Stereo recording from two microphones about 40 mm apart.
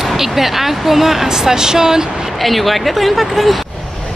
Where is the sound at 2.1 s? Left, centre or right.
Centre.